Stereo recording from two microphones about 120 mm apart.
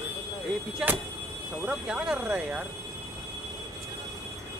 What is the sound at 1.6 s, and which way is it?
Speech, 10° right (ahead or behind).